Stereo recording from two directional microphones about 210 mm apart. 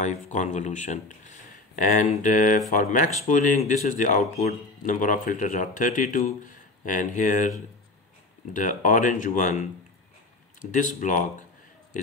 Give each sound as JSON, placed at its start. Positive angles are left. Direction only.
{"t": 0.0, "sound": "speech", "side_deg": 35}
{"t": 8.5, "sound": "speech", "side_deg": 40}